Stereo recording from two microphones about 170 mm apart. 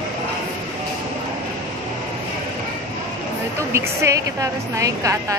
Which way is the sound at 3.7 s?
15° right (ahead or behind).